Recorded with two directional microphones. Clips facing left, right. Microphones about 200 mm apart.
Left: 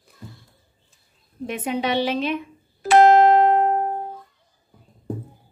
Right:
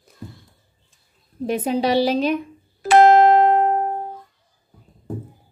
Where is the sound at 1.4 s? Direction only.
35° right (ahead or behind).